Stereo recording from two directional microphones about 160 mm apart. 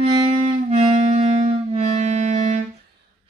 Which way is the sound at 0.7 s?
45° right (ahead or behind).